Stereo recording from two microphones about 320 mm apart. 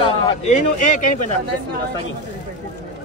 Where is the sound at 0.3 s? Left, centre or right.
Left.